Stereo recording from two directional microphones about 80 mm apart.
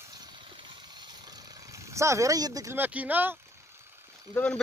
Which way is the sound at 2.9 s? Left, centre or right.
Centre.